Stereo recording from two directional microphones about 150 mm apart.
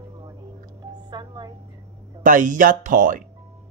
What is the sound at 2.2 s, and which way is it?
Speech, 60° right (ahead or behind).